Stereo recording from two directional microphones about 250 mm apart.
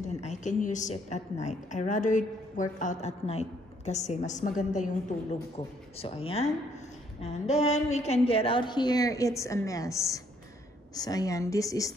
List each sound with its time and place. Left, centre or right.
0.0 s a woman's voice: left